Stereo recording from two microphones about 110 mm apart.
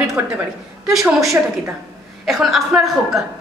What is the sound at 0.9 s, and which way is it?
A woman's voice, centre (ahead or behind).